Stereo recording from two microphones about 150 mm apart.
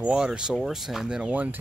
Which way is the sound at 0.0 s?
5° right (ahead or behind).